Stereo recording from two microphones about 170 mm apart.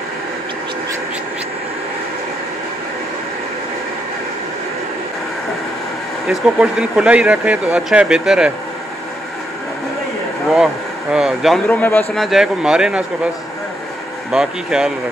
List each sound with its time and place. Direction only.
6.2 s speech: 5° right (ahead or behind)
10.5 s speech: 5° right (ahead or behind)
12.2 s speech: centre (ahead or behind)
14.3 s speech: 5° right (ahead or behind)